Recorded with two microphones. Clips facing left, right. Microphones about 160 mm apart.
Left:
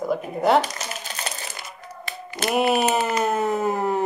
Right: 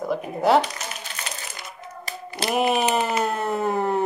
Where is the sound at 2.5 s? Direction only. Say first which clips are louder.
Left 1 dB; centre (ahead or behind).